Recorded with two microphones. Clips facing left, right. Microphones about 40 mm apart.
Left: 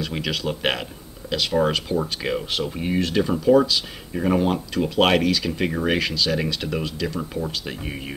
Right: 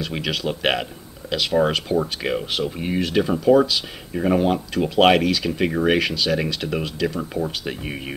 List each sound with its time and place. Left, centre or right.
0.0 s speech: centre